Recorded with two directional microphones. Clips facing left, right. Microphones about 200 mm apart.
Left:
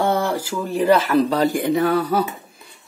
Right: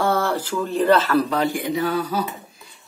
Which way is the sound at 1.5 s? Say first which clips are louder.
Left 4 dB; 55° left (ahead or behind).